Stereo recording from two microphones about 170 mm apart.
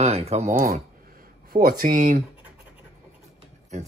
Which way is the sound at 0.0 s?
35° right (ahead or behind).